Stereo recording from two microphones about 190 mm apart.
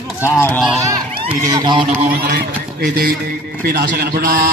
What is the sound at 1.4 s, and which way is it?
Speech, 20° right (ahead or behind).